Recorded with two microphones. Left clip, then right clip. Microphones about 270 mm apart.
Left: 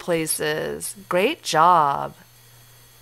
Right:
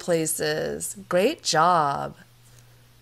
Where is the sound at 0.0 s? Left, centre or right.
Centre.